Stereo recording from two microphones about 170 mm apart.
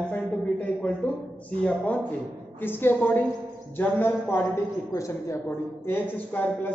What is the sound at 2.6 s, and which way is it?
A man's voice, 10° left (ahead or behind).